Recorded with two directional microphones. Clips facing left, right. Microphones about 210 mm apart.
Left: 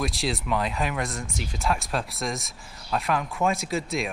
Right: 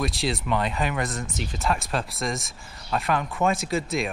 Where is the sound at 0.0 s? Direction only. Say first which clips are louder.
Right 1 dB; centre (ahead or behind).